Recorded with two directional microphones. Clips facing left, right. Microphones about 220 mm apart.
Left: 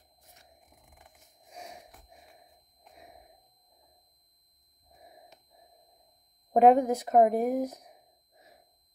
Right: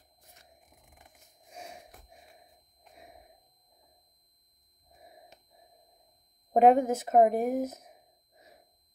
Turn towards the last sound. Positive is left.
turn(degrees=-25)  # may be behind; listen again after turning